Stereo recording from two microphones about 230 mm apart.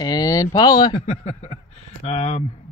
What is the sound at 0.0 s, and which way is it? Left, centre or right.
Speech, centre.